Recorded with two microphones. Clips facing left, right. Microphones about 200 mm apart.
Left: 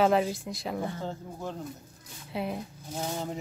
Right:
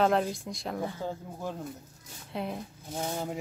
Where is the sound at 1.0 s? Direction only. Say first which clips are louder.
Right 1 dB; 10° right (ahead or behind).